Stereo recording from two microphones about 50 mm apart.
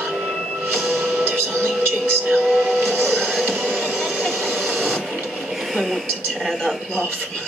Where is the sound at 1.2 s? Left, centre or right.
Right.